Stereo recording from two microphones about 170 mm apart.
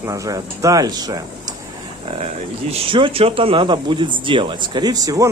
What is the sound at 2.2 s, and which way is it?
Speech, 35° right (ahead or behind).